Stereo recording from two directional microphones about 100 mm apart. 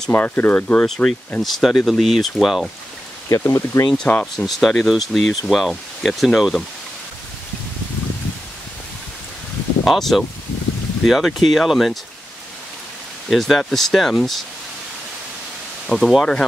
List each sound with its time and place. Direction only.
0.1 s speech: 20° left (ahead or behind)
0.8 s speech: 5° left (ahead or behind)
3.3 s speech: 30° left (ahead or behind)
3.9 s speech: 10° left (ahead or behind)
9.8 s speech: centre (ahead or behind)
13.3 s speech: 5° left (ahead or behind)
15.9 s speech: 5° left (ahead or behind)